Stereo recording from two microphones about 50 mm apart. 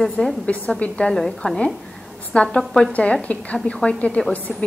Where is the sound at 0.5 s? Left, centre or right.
Left.